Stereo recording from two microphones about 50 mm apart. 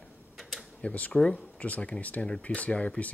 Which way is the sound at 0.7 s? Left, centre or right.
Left.